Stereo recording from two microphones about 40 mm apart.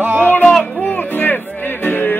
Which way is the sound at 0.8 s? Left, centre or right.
Left.